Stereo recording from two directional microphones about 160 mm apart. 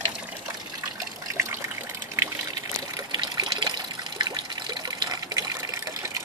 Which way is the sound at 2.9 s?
25° right (ahead or behind).